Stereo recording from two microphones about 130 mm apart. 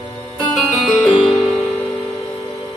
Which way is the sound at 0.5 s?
5° right (ahead or behind).